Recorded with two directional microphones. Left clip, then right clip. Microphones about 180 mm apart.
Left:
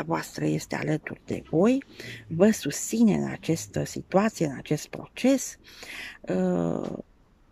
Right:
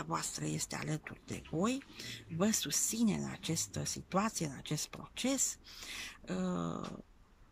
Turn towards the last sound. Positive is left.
turn(degrees=45)  # may be behind; listen again after turning